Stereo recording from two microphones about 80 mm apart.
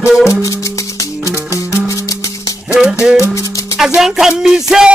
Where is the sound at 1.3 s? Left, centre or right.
Left.